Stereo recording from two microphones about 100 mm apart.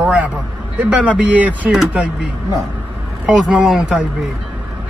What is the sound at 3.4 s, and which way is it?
Speech, 10° right (ahead or behind).